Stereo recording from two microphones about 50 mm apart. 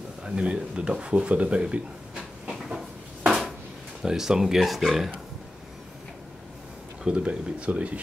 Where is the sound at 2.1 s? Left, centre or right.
Centre.